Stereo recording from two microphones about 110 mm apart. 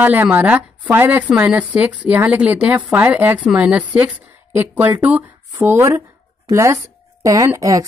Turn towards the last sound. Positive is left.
turn(degrees=-30)  # may be behind; listen again after turning